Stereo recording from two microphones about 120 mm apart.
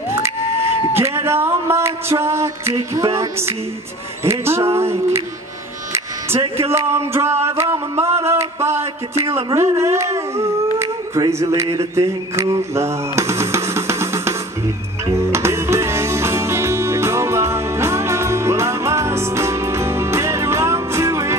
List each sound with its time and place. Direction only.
0.9 s speech: 20° right (ahead or behind)
6.7 s speech: 25° right (ahead or behind)
15.3 s music: 20° right (ahead or behind)